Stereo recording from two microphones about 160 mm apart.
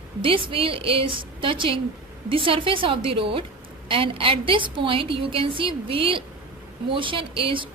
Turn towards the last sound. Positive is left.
turn(degrees=-35)  # may be behind; listen again after turning